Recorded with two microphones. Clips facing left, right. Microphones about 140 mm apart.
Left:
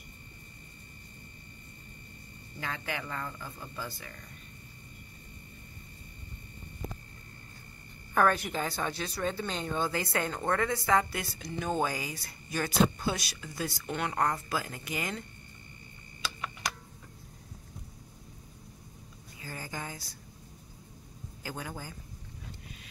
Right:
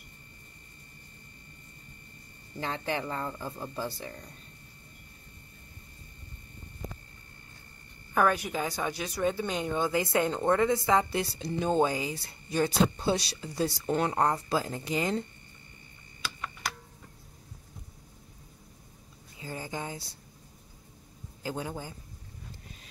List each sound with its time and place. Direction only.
2.6 s speech: 30° right (ahead or behind)
8.1 s speech: 10° right (ahead or behind); by 15.2 s 30° right (ahead or behind)
19.4 s a sound: 20° right (ahead or behind)
21.4 s a man's voice: 25° right (ahead or behind)